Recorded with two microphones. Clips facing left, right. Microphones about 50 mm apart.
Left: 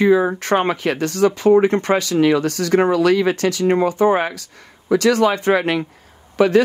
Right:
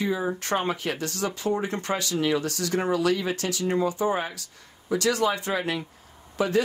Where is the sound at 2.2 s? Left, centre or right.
Left.